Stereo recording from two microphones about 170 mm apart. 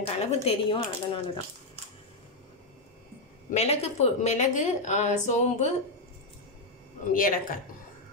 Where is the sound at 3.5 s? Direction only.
40° left (ahead or behind).